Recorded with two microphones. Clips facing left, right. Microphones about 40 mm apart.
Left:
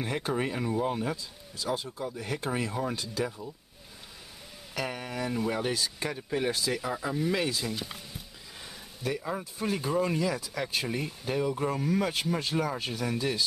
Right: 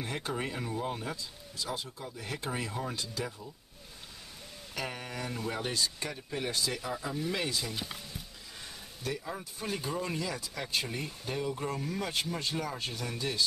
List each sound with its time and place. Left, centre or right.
0.0 s speech: centre
4.7 s speech: centre
9.0 s speech: centre